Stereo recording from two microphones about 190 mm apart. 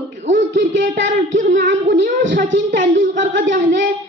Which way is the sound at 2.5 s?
70° right (ahead or behind).